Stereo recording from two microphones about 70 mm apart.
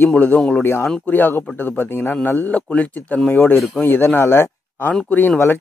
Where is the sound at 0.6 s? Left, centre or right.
Left.